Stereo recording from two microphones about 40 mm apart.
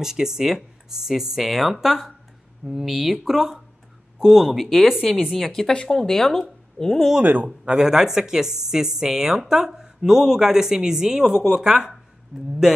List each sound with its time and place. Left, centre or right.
0.0 s a woman's voice: centre
5.7 s speech: centre
7.4 s speech: right
7.8 s a woman's voice: centre